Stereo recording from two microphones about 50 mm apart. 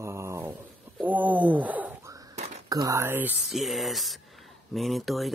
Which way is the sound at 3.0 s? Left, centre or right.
Right.